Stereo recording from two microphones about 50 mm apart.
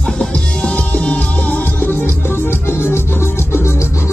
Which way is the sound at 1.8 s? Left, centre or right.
Left.